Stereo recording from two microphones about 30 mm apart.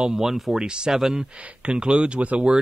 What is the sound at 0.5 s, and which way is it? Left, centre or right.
Speech, right.